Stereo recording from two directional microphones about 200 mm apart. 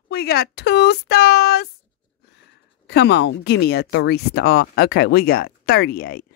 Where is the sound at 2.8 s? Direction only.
60° left (ahead or behind).